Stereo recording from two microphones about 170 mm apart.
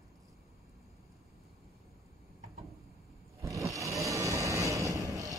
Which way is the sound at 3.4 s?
20° right (ahead or behind).